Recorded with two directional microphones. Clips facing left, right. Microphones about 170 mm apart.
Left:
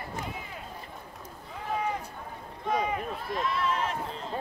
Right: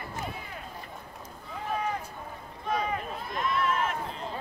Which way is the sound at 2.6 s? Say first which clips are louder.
Left 1 dB; 15° left (ahead or behind).